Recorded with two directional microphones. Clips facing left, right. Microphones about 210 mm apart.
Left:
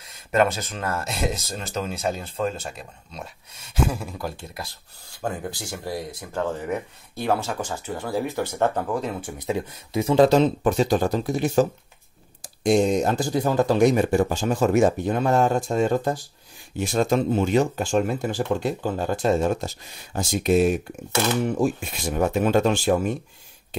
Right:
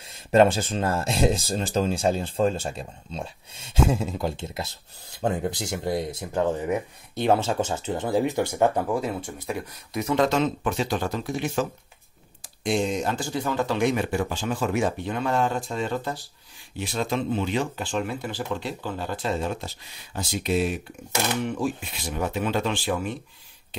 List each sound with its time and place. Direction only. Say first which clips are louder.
0.0 s speech: right 3 dB; 30° right (ahead or behind); by 9.3 s 5° right (ahead or behind)
9.4 s speech: left 5 dB; 25° left (ahead or behind); by 23.1 s 45° left (ahead or behind)